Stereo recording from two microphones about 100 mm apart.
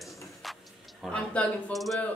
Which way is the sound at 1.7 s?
Centre (ahead or behind).